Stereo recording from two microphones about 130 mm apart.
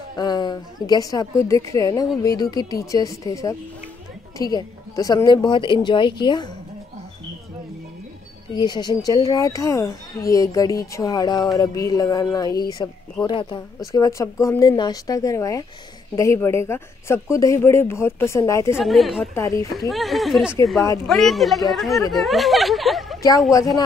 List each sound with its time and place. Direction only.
0.1 s speech: 30° left (ahead or behind)
8.5 s speech: 35° left (ahead or behind)
13.9 s speech: 25° left (ahead or behind)
18.8 s speech: centre (ahead or behind)
19.3 s speech: 20° left (ahead or behind)
19.9 s speech: centre (ahead or behind)